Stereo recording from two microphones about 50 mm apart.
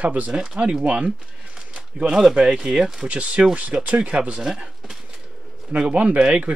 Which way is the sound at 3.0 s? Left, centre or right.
Right.